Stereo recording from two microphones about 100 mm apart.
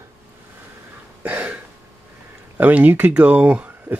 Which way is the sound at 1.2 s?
15° right (ahead or behind).